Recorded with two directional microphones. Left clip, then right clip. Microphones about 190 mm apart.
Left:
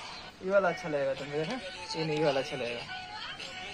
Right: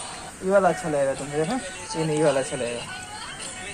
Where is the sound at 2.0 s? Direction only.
35° left (ahead or behind).